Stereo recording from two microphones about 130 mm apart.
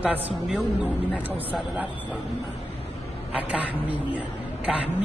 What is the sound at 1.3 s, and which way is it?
Speech, 10° right (ahead or behind).